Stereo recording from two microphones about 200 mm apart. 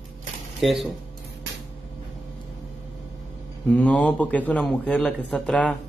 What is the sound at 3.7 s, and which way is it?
A man's voice, 5° left (ahead or behind).